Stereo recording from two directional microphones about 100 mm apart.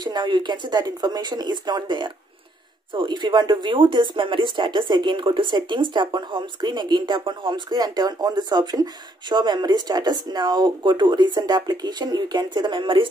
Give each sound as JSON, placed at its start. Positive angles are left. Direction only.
{"t": 0.0, "sound": "speech", "side_deg": -45}